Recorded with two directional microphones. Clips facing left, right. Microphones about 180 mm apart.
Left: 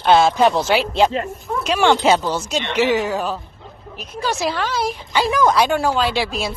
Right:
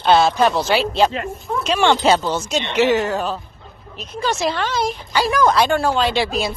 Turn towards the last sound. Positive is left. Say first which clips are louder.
# right 2 dB
turn(degrees=0)  # may be behind; listen again after turning